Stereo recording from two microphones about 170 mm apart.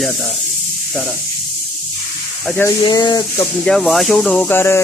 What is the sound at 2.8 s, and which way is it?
Speech, 25° left (ahead or behind).